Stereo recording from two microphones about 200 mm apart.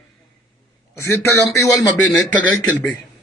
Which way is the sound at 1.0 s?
15° left (ahead or behind).